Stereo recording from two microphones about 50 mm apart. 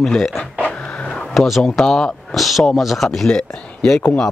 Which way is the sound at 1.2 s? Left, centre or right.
Centre.